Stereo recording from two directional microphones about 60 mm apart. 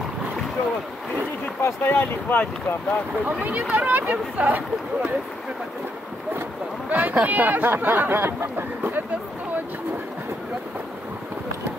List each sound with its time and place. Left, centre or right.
1.6 s speech: left
3.3 s speech: right
6.9 s speech: right